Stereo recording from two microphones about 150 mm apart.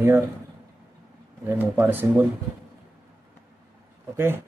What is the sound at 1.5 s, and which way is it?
Speech, 15° right (ahead or behind).